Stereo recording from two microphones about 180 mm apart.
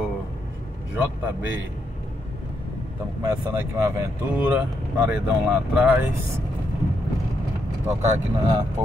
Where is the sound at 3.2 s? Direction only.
15° right (ahead or behind).